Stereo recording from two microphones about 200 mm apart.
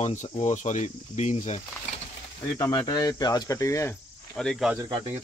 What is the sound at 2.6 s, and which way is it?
Speech, 20° left (ahead or behind).